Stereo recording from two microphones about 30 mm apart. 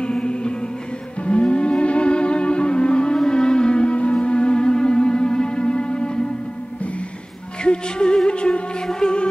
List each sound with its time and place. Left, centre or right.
0.0 s music: left
7.6 s music: left